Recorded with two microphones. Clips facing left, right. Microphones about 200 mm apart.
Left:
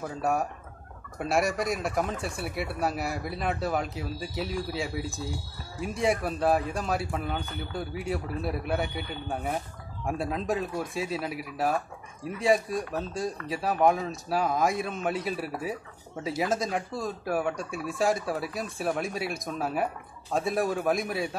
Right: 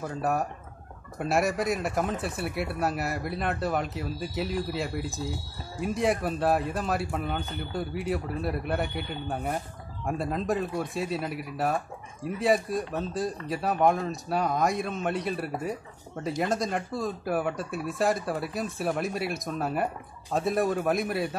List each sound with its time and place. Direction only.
0.0 s speech: centre (ahead or behind)